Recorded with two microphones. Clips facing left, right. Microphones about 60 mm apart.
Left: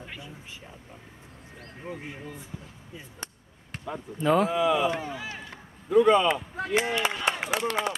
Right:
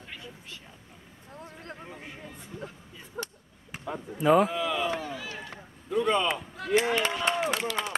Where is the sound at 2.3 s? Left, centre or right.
Right.